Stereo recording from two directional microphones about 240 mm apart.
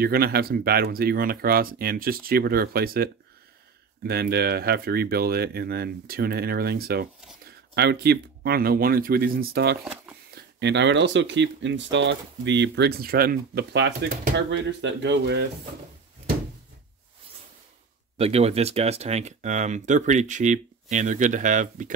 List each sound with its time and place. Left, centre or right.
0.0 s speech: right
18.1 s speech: right